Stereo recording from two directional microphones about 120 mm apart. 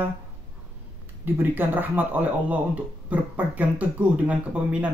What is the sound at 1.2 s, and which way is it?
A man's voice, 15° right (ahead or behind).